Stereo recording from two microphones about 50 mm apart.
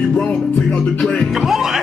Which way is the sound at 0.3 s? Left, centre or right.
Left.